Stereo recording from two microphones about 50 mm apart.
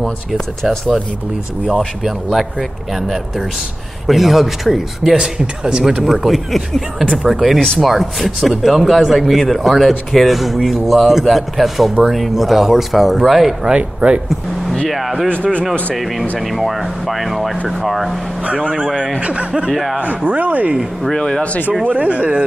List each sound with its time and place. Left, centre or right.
0.0 s speech: centre
2.9 s speech: centre
13.7 s speech: centre
14.9 s speech: centre
15.2 s speech: left
15.9 s speech: centre
18.4 s speech: right
19.7 s speech: centre
20.2 s speech: right
21.0 s speech: centre
21.8 s speech: right